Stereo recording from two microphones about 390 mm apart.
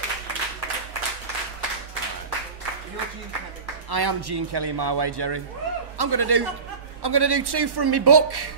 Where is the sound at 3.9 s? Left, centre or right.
Right.